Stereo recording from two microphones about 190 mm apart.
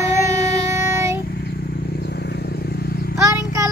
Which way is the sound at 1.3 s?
55° left (ahead or behind).